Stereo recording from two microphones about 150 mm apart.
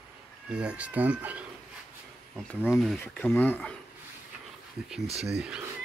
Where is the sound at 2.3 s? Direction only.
5° left (ahead or behind).